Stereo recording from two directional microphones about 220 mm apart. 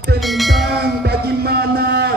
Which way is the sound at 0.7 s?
45° right (ahead or behind).